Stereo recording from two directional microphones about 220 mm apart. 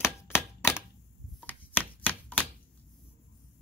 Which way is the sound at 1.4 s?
10° left (ahead or behind).